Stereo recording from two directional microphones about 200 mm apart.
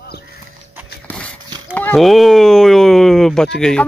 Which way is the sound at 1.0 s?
5° left (ahead or behind).